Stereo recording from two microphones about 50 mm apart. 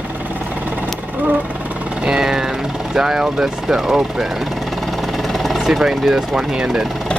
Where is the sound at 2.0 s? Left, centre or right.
Centre.